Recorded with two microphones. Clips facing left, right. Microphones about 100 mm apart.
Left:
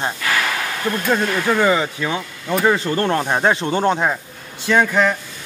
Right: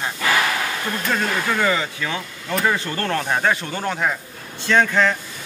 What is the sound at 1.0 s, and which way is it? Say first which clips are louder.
Speech: left 4 dB; 20° left (ahead or behind).